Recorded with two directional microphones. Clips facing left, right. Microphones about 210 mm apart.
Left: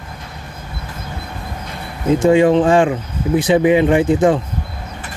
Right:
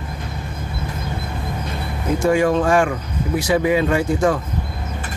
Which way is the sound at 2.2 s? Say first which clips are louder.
Left 5 dB; 20° left (ahead or behind).